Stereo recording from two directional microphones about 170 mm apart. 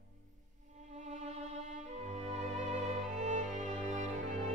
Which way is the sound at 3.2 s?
45° right (ahead or behind).